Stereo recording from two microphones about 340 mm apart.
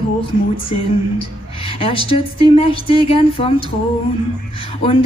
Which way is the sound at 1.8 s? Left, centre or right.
Centre.